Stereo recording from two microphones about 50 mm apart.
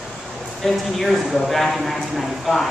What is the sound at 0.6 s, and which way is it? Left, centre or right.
Speech, centre.